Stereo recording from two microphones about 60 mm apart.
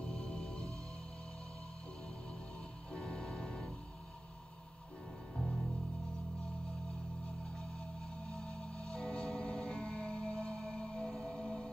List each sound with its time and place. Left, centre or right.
0.0 s music: centre
2.9 s music: centre
5.3 s music: centre
7.5 s music: centre